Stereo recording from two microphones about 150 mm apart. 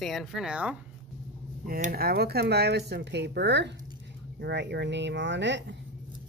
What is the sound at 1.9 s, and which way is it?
Speech, 90° right.